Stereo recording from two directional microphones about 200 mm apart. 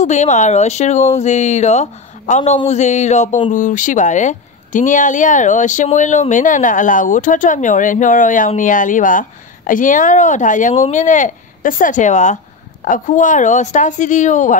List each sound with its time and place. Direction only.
0.0 s speech: 35° left (ahead or behind)